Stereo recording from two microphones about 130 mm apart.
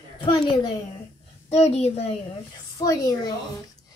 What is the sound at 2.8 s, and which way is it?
Speech, 25° left (ahead or behind).